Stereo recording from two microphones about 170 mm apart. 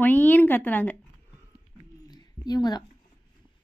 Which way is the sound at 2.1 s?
25° left (ahead or behind).